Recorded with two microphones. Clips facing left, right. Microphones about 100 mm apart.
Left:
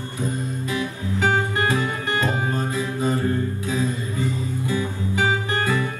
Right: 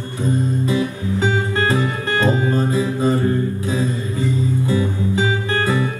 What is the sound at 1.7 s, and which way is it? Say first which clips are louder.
Music: right 4 dB; 30° right (ahead or behind).